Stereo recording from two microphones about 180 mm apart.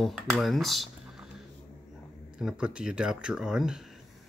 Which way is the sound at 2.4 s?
5° right (ahead or behind).